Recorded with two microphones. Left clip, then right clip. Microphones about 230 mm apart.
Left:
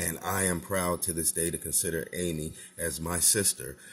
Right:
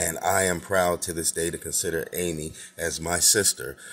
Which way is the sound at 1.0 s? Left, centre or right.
Centre.